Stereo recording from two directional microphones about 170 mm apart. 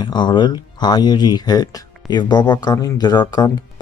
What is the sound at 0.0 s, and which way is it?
Speech, 25° left (ahead or behind).